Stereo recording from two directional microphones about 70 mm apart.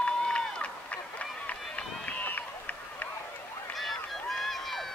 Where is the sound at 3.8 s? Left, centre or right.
Centre.